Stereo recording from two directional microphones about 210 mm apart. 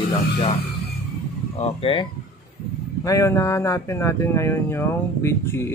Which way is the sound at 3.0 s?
15° left (ahead or behind).